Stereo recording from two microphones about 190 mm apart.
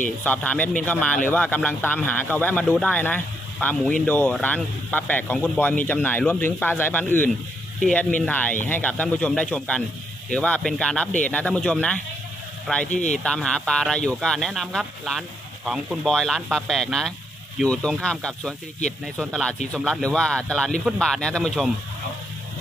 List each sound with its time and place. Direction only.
0.2 s speech: 10° left (ahead or behind)
12.9 s speech: 40° left (ahead or behind)
13.2 s speech: 5° left (ahead or behind)